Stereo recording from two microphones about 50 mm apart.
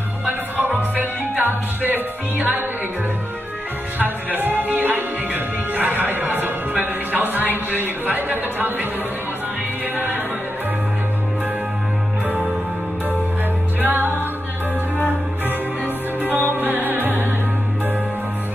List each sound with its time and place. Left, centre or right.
0.3 s music: right
4.0 s music: right
9.9 s music: right
13.7 s music: right
16.2 s music: right